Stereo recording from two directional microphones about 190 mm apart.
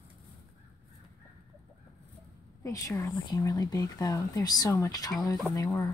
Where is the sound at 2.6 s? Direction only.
15° left (ahead or behind).